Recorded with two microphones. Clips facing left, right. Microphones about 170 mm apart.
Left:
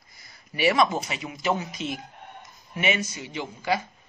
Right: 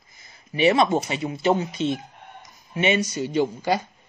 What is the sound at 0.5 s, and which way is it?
Speech, 25° right (ahead or behind).